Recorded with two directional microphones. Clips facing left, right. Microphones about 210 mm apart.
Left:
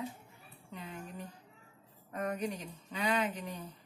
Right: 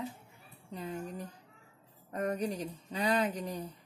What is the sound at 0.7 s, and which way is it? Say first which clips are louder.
Speech: right 6 dB; 35° right (ahead or behind).